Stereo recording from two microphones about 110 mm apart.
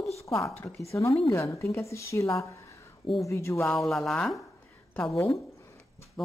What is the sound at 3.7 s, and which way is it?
Speech, 5° left (ahead or behind).